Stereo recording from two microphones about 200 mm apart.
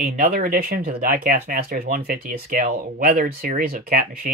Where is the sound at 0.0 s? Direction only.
45° right (ahead or behind).